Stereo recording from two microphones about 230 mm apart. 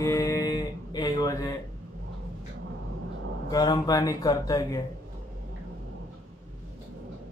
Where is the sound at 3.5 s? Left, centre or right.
Centre.